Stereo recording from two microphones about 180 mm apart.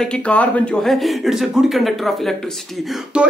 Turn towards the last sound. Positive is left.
turn(degrees=-5)  # may be behind; listen again after turning